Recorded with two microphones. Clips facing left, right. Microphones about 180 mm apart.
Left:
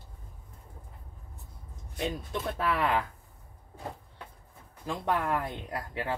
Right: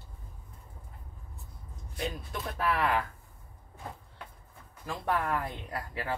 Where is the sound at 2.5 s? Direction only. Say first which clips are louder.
Even; 25° left (ahead or behind).